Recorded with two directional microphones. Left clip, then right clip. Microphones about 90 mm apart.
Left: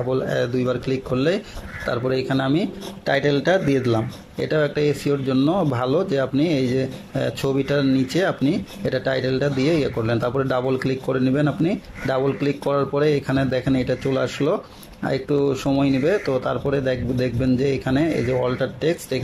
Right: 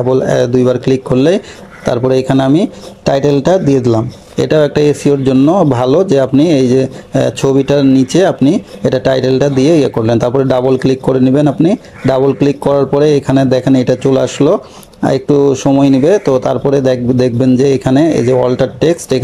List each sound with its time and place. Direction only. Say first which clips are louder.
0.1 s speech: right 11 dB; 35° right (ahead or behind)
4.4 s speech: right 11 dB; 35° right (ahead or behind)